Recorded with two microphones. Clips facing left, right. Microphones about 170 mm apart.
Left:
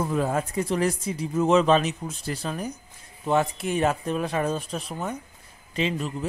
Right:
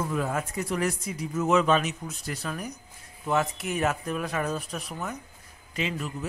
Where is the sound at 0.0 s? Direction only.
30° left (ahead or behind).